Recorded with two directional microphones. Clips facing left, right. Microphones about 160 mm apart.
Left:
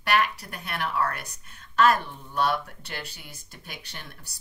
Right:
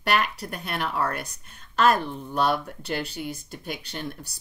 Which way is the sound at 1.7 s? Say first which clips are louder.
Even; 25° right (ahead or behind).